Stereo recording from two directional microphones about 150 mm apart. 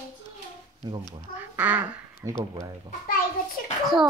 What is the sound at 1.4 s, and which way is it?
Speech, 10° right (ahead or behind).